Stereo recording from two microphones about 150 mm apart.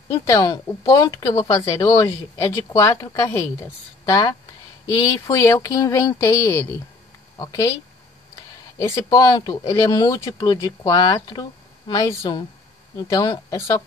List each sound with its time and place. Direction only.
0.3 s speech: 25° left (ahead or behind)
8.8 s speech: 20° left (ahead or behind)